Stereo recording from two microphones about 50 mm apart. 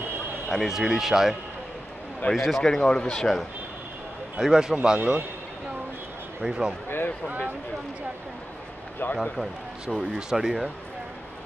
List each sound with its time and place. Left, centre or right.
0.5 s speech: centre
2.3 s speech: centre
2.6 s speech: centre
4.4 s speech: centre
6.4 s speech: centre
9.0 s a man's voice: left
9.4 s speech: centre